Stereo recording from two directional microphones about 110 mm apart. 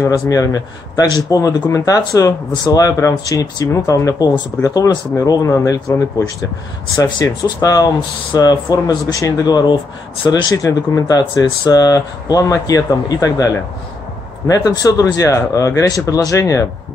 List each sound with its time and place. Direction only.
0.0 s speech: 30° left (ahead or behind)
14.5 s speech: 35° left (ahead or behind)